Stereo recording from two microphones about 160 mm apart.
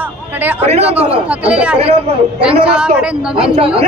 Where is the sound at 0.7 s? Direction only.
40° right (ahead or behind).